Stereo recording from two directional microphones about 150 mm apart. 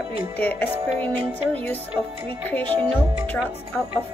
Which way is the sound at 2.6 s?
35° right (ahead or behind).